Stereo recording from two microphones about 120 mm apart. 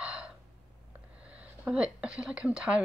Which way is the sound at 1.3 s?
10° right (ahead or behind).